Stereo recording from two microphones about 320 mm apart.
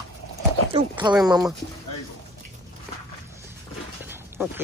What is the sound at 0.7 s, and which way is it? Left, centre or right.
Speech, centre.